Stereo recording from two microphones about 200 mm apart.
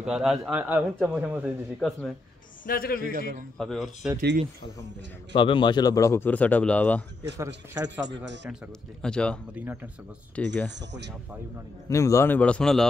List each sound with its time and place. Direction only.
0.0 s speech: centre (ahead or behind)
2.6 s a man's voice: 45° left (ahead or behind)
3.1 s a man's voice: 45° right (ahead or behind)
3.5 s speech: centre (ahead or behind)
5.3 s a man's voice: 25° left (ahead or behind); by 7.1 s 5° left (ahead or behind)
7.3 s a man's voice: 20° right (ahead or behind)
9.0 s speech: 5° left (ahead or behind)
10.8 s speech: 60° right (ahead or behind)
11.9 s a man's voice: 15° left (ahead or behind)